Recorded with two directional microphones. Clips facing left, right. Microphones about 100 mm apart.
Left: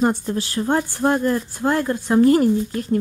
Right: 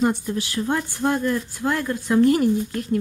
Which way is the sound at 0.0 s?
35° left (ahead or behind).